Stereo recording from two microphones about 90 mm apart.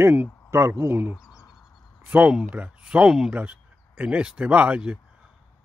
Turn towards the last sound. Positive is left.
turn(degrees=-15)  # may be behind; listen again after turning